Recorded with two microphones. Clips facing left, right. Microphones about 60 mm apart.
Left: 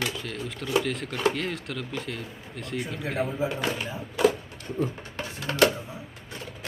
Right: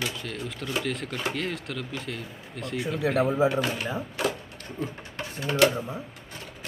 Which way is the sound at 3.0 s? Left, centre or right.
Right.